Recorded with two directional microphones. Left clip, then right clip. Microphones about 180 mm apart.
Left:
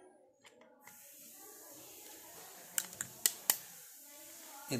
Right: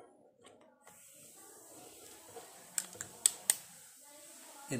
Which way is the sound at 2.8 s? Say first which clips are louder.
Left 2 dB; 10° right (ahead or behind).